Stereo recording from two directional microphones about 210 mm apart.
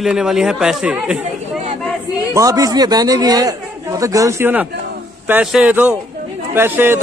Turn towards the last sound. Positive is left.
turn(degrees=-10)  # may be behind; listen again after turning